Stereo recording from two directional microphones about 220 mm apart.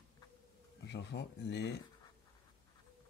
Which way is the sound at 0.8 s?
50° left (ahead or behind).